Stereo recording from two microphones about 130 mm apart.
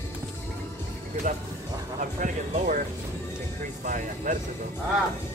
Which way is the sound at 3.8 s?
90° right.